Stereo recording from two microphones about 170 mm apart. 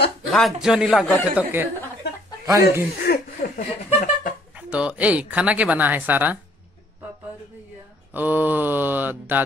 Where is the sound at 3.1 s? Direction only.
65° left (ahead or behind).